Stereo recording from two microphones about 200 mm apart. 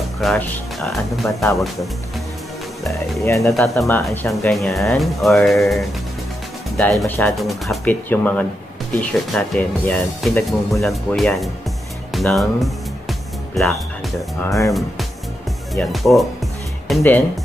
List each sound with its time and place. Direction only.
0.2 s speech: centre (ahead or behind)
2.9 s speech: 15° left (ahead or behind)
3.5 s speech: centre (ahead or behind)
14.4 s speech: 15° left (ahead or behind)
14.7 s speech: centre (ahead or behind)